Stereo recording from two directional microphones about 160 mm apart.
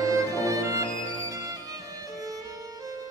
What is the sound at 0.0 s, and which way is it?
Music, 20° right (ahead or behind).